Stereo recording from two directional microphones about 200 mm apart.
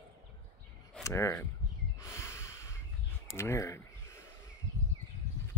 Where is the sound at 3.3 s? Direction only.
15° left (ahead or behind).